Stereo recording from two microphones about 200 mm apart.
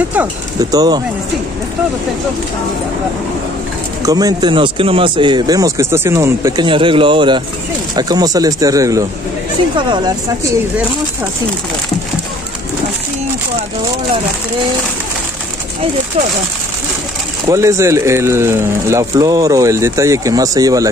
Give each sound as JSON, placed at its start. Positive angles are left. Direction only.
{"t": 0.6, "sound": "speech", "side_deg": -20}
{"t": 4.0, "sound": "speech", "side_deg": -20}
{"t": 17.5, "sound": "speech", "side_deg": -15}